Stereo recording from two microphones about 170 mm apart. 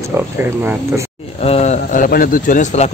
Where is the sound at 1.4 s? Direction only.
40° left (ahead or behind).